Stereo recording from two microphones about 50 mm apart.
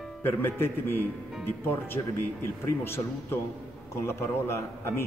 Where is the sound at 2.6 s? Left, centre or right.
Left.